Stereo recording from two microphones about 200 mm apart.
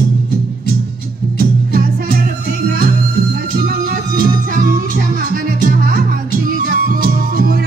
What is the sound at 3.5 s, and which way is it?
Music, 50° right (ahead or behind).